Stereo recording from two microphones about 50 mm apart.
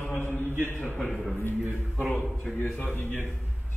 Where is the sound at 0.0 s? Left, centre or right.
Left.